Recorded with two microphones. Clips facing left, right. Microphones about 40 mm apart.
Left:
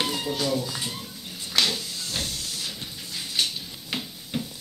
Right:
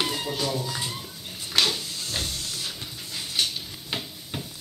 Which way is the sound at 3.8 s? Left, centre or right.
Centre.